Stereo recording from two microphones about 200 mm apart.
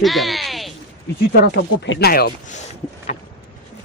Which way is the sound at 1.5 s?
65° left (ahead or behind).